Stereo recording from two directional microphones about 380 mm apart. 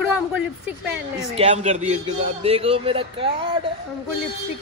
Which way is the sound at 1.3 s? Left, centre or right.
Centre.